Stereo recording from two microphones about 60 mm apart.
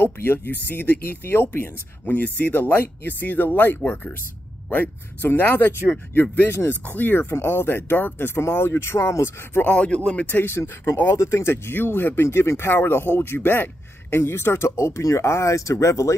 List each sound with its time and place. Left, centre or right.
0.0 s speech: left
9.7 s speech: centre
10.2 s speech: left